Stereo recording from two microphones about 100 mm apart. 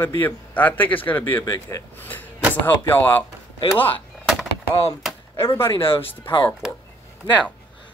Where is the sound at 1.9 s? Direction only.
20° left (ahead or behind).